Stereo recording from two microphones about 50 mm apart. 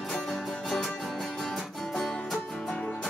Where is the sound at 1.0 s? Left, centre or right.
Centre.